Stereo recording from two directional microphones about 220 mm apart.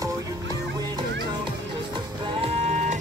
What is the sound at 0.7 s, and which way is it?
Music, 20° right (ahead or behind).